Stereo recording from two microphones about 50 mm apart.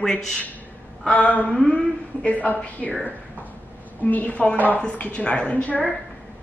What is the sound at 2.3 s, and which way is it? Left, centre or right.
Speech, left.